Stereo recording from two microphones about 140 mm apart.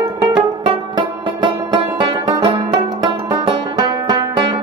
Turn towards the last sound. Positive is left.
turn(degrees=-35)  # may be behind; listen again after turning